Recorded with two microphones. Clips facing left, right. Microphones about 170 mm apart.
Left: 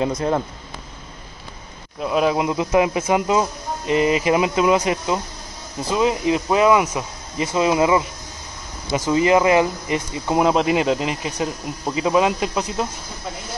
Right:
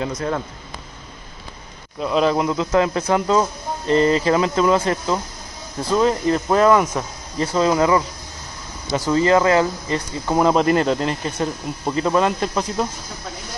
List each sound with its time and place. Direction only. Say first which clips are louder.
0.0 s speech: left 3 dB; 20° left (ahead or behind)
2.0 s speech: right 1 dB; 5° left (ahead or behind)